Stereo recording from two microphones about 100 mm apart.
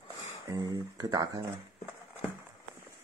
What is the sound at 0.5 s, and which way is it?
Speech, 45° right (ahead or behind).